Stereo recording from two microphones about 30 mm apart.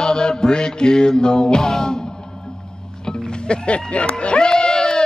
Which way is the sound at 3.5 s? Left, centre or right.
Left.